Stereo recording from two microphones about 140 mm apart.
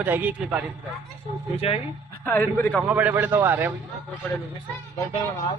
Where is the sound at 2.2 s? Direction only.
15° left (ahead or behind).